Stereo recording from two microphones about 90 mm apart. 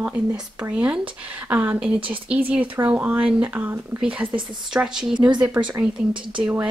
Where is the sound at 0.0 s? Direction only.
20° right (ahead or behind).